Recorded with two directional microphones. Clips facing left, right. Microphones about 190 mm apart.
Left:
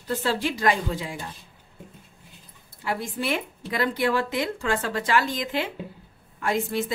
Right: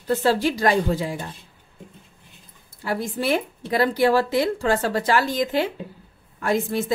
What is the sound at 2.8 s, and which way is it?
Speech, 40° right (ahead or behind).